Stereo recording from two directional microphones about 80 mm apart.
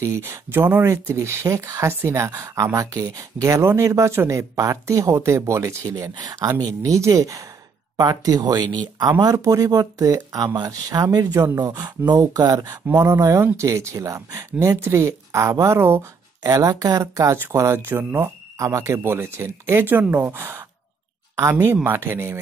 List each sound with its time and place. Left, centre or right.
0.0 s speech: right
6.8 s speech: right
9.2 s speech: right
21.8 s speech: right